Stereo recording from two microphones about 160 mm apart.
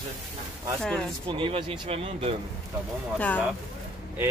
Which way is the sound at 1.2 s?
35° right (ahead or behind).